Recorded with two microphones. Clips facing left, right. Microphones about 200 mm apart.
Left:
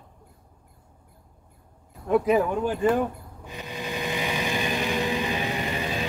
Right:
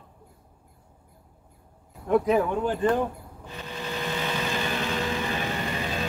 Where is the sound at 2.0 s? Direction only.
5° left (ahead or behind).